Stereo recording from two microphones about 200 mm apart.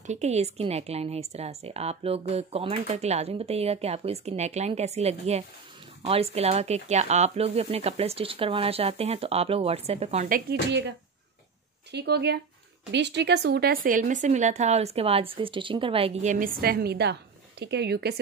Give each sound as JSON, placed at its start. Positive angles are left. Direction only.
{"t": 0.0, "sound": "speech", "side_deg": -35}
{"t": 10.7, "sound": "speech", "side_deg": -60}